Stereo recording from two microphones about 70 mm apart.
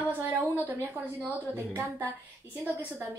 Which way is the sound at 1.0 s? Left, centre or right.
Right.